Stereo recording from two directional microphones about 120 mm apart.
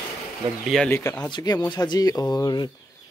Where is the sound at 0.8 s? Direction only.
15° left (ahead or behind).